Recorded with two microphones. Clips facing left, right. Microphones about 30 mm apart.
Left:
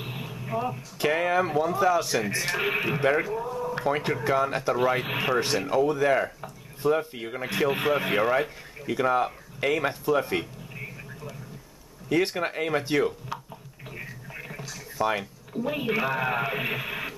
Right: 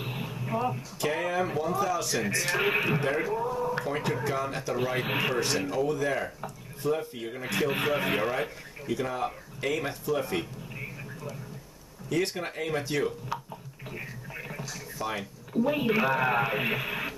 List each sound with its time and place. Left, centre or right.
0.0 s a sound: centre
1.0 s speech: centre
3.3 s a man's voice: centre
3.8 s speech: centre
4.7 s speech: centre
5.7 s speech: centre
7.5 s speech: centre
8.8 s speech: left
10.7 s a sound: centre
12.1 s speech: left
13.3 s a sound: centre
15.0 s speech: centre
15.5 s speech: centre